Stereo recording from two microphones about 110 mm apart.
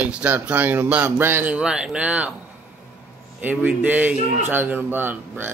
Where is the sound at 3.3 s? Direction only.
15° right (ahead or behind).